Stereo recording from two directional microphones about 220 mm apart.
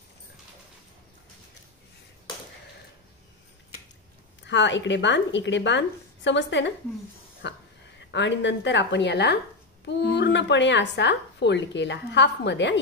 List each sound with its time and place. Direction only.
4.4 s speech: 55° left (ahead or behind)
7.4 s a sound: 50° left (ahead or behind)
8.1 s speech: 55° left (ahead or behind)